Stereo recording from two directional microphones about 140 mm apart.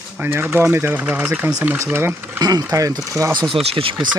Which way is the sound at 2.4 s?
25° right (ahead or behind).